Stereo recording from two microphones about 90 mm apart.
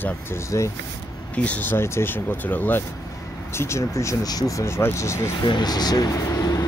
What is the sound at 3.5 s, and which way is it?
Speech, 30° left (ahead or behind).